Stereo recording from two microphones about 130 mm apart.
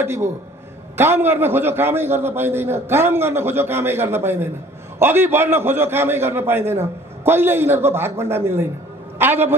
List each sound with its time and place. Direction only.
0.0 s a man's voice: 20° right (ahead or behind)